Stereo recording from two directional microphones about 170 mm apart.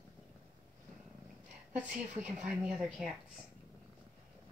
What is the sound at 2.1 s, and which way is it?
Speech, 40° right (ahead or behind).